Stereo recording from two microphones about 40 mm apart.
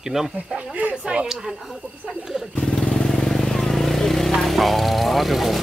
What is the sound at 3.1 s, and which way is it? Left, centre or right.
Vehicle, centre.